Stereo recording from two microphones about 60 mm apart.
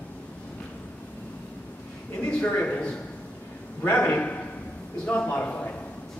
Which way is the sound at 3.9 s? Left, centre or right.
Left.